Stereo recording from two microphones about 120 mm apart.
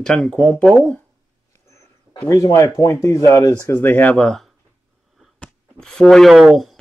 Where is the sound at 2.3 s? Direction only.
30° left (ahead or behind).